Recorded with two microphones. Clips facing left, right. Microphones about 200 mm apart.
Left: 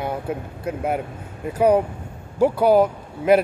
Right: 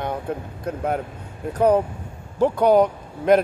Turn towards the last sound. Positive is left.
turn(degrees=5)  # may be behind; listen again after turning